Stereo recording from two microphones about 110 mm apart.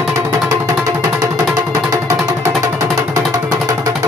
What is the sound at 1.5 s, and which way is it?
Music, 25° right (ahead or behind).